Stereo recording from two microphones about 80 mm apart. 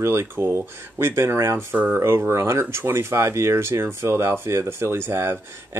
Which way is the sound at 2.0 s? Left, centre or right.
Right.